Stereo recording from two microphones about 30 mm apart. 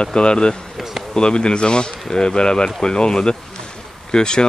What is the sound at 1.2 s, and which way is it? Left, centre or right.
Speech, left.